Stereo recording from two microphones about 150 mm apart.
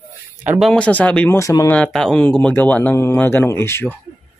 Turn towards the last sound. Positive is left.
turn(degrees=15)  # may be behind; listen again after turning